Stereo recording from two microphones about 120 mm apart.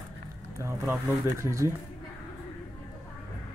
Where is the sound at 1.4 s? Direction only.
25° right (ahead or behind).